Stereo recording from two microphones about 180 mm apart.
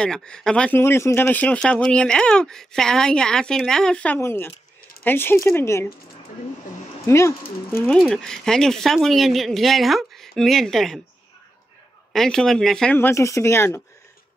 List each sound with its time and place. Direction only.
0.0 s speech: 5° left (ahead or behind)
7.1 s speech: 15° left (ahead or behind)
7.8 s speech: centre (ahead or behind)
12.1 s speech: centre (ahead or behind)